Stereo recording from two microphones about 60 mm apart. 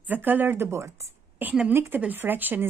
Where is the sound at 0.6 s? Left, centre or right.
Right.